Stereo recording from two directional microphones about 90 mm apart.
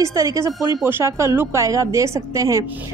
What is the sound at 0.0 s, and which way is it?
Speech, 35° right (ahead or behind).